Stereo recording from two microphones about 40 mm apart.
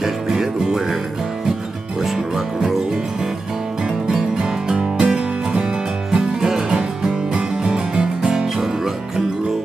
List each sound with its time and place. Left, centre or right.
0.3 s music: centre
4.4 s music: right